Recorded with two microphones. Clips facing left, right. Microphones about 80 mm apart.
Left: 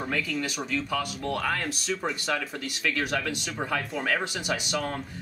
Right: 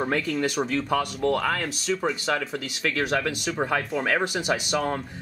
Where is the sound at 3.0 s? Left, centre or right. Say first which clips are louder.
Right 6 dB; right.